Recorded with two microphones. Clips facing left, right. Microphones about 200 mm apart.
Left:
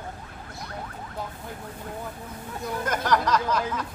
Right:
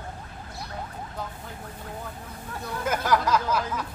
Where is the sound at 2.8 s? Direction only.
5° right (ahead or behind).